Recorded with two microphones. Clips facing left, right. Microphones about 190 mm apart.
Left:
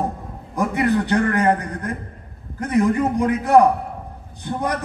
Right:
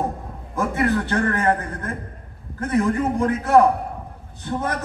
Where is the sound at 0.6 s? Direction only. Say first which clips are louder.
Left 2 dB; 15° left (ahead or behind).